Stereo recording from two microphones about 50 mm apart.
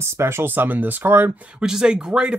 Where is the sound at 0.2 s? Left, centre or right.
Right.